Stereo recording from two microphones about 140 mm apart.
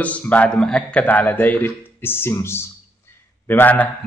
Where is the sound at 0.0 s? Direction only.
10° left (ahead or behind).